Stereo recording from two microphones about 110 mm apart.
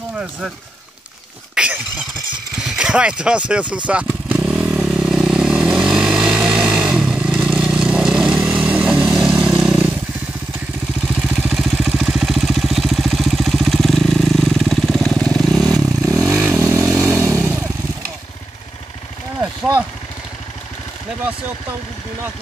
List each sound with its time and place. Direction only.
1.5 s a sound: 10° right (ahead or behind)
2.5 s speech: 5° right (ahead or behind)
3.7 s motorcycle: 10° right (ahead or behind)
11.1 s vehicle: 10° right (ahead or behind)
16.3 s motorcycle: 15° right (ahead or behind)